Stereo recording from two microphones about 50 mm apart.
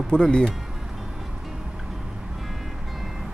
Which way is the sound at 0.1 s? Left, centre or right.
Centre.